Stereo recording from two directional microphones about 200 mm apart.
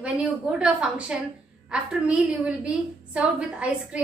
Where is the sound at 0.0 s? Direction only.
5° right (ahead or behind).